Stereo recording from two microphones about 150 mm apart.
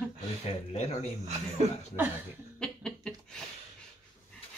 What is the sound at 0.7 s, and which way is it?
Speech, 45° left (ahead or behind).